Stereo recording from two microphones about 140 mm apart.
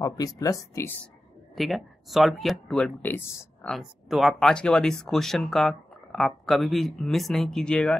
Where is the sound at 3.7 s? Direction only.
Centre (ahead or behind).